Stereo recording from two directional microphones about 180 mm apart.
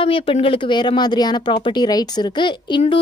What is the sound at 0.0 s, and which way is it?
Speech, 30° left (ahead or behind).